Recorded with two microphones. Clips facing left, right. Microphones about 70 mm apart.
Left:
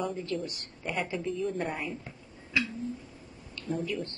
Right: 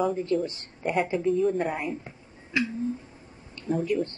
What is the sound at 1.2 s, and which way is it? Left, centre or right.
Speech, centre.